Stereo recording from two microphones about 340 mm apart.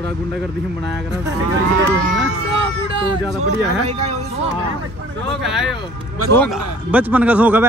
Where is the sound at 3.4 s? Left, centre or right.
Centre.